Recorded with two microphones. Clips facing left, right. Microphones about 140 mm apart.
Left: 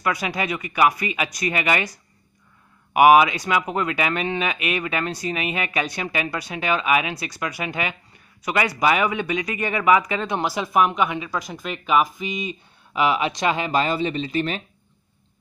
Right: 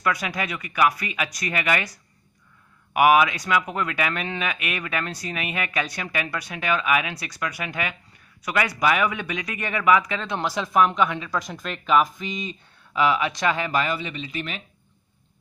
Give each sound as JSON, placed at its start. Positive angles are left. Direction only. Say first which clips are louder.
{"t": 0.0, "sound": "speech", "louder": "left 1 dB", "side_deg": 10}